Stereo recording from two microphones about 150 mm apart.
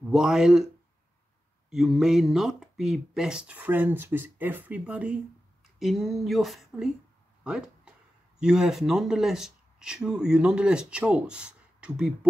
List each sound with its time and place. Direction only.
0.1 s speech: 5° right (ahead or behind)
1.7 s speech: 5° right (ahead or behind)
7.4 s a sound: 5° right (ahead or behind)
8.4 s speech: 5° right (ahead or behind)